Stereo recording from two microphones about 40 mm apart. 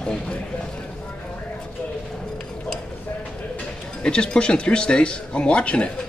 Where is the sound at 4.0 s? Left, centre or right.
Left.